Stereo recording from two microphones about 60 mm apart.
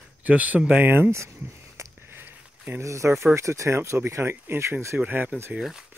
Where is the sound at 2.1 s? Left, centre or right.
Right.